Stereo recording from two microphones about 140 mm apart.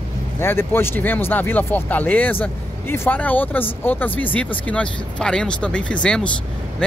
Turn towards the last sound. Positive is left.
turn(degrees=5)  # may be behind; listen again after turning